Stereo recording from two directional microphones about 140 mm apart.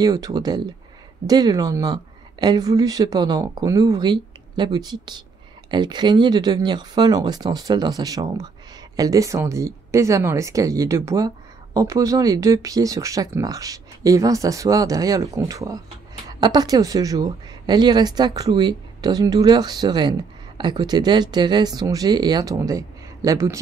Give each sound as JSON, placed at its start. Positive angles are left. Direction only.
{"t": 0.0, "sound": "speech", "side_deg": -30}